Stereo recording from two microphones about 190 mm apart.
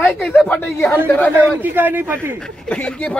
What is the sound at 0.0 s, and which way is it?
Speech, 5° left (ahead or behind).